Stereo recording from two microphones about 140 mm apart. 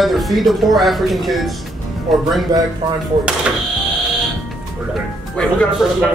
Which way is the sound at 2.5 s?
30° right (ahead or behind).